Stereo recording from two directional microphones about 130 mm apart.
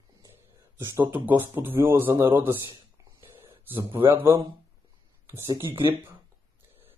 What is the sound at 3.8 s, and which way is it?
Speech, 40° right (ahead or behind).